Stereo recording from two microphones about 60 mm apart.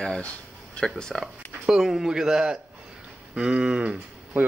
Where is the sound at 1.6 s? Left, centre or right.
Centre.